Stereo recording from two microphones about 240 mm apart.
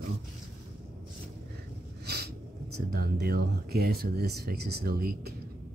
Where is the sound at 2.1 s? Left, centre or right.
Right.